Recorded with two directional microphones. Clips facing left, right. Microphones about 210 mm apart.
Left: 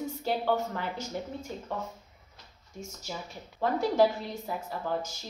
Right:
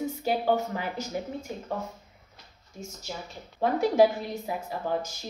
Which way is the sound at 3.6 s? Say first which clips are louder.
Right 3 dB; 15° right (ahead or behind).